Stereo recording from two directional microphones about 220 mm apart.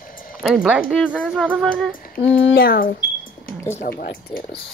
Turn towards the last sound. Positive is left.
turn(degrees=45)  # may be behind; listen again after turning